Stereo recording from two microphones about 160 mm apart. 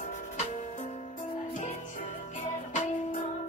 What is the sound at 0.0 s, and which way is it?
Music, 50° left (ahead or behind).